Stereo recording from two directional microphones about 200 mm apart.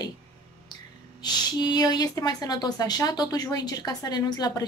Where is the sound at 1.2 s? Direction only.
20° left (ahead or behind).